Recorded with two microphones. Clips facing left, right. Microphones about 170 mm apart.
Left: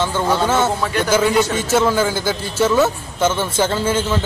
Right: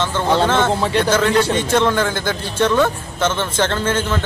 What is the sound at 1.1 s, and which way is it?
A man's voice, 10° left (ahead or behind).